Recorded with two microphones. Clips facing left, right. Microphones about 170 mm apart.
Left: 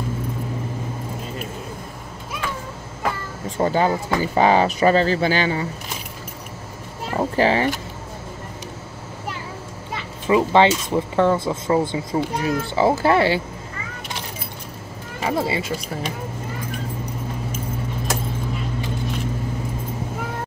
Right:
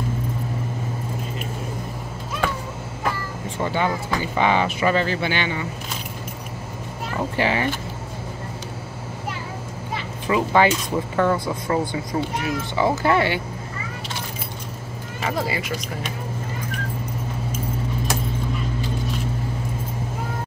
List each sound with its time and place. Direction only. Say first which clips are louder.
3.5 s speech: left 4 dB; 40° left (ahead or behind)
7.2 s speech: left 4 dB; 35° left (ahead or behind)
10.2 s speech: left 3 dB; 25° left (ahead or behind)
15.2 s speech: left 3 dB; 25° left (ahead or behind)